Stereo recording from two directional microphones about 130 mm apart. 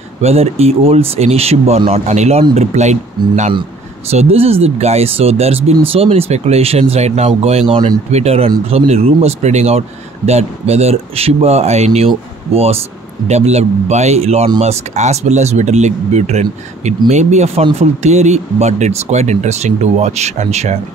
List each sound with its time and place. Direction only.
0.2 s speech: 55° right (ahead or behind)